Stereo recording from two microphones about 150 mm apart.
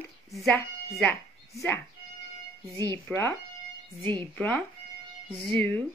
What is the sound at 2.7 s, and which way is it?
Speech, 15° left (ahead or behind).